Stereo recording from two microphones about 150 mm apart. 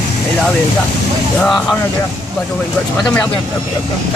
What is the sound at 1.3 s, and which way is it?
Speech, 5° left (ahead or behind).